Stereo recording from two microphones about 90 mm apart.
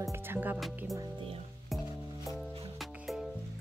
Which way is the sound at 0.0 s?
25° right (ahead or behind).